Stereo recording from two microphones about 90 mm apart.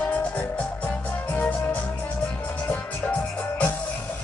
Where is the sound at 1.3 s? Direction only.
15° left (ahead or behind).